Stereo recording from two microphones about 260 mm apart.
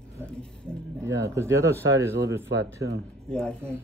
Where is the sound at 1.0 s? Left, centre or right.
Centre.